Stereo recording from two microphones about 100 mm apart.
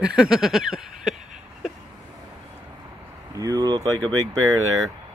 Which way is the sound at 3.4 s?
40° right (ahead or behind).